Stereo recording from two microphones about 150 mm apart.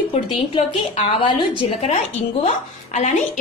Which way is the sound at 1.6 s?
45° left (ahead or behind).